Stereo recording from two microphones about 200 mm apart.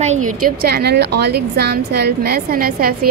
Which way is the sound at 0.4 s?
50° right (ahead or behind).